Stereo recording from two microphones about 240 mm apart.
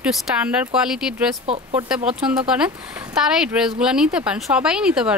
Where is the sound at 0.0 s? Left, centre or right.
Centre.